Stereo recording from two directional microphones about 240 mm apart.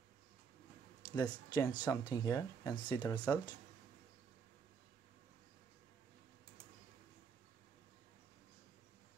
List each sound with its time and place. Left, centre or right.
1.1 s speech: centre